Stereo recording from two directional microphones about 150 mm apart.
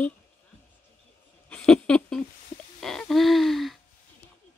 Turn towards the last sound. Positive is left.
turn(degrees=0)  # may be behind; listen again after turning